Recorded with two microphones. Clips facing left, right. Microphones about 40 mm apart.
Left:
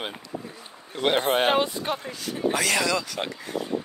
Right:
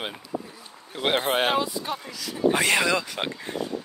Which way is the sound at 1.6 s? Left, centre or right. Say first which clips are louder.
Left 2 dB; left.